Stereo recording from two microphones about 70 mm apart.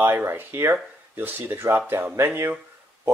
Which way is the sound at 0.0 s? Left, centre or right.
Right.